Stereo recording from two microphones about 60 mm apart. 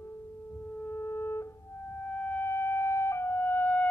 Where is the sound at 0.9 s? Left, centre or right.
Left.